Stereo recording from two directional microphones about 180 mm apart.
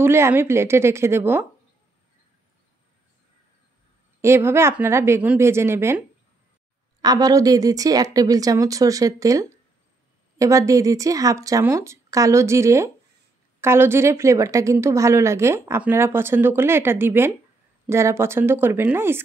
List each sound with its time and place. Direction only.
0.0 s a woman's voice: 15° right (ahead or behind)
4.2 s a woman's voice: 15° right (ahead or behind)